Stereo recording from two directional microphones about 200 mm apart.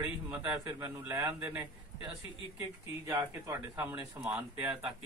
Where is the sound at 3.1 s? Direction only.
15° right (ahead or behind).